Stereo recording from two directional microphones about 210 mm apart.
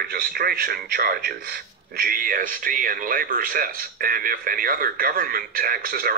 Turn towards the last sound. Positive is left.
turn(degrees=-45)  # may be behind; listen again after turning